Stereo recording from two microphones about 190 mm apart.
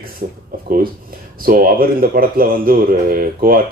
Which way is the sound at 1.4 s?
50° right (ahead or behind).